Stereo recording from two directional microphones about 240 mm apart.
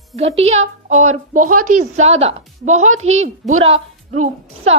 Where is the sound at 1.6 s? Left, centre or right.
Right.